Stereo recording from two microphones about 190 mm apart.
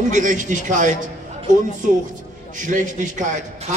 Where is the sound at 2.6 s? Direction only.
40° right (ahead or behind).